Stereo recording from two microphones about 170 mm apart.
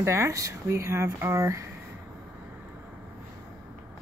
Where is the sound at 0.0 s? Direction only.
15° right (ahead or behind).